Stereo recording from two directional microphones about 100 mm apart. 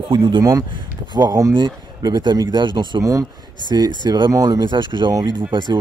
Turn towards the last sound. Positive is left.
turn(degrees=-50)  # may be behind; listen again after turning